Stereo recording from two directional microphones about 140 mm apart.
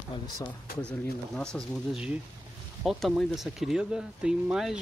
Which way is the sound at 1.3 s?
5° left (ahead or behind).